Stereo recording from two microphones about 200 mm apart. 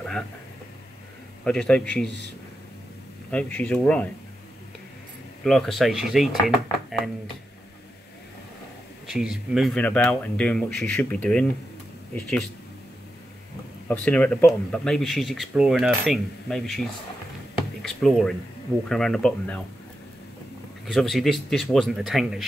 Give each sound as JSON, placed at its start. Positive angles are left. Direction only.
{"t": 1.4, "sound": "speech", "side_deg": 5}
{"t": 3.3, "sound": "speech", "side_deg": 5}
{"t": 5.4, "sound": "speech", "side_deg": 0}
{"t": 9.0, "sound": "speech", "side_deg": 0}
{"t": 13.8, "sound": "speech", "side_deg": 5}
{"t": 17.8, "sound": "speech", "side_deg": 0}
{"t": 20.8, "sound": "speech", "side_deg": 0}